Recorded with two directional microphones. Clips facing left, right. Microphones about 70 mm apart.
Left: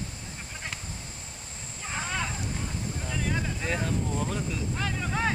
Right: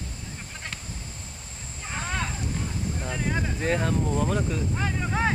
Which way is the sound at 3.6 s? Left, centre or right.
Right.